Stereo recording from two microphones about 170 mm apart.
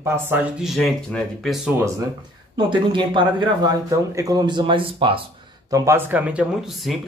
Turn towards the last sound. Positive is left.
turn(degrees=0)  # may be behind; listen again after turning